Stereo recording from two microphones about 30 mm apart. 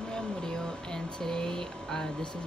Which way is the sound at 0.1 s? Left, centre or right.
Left.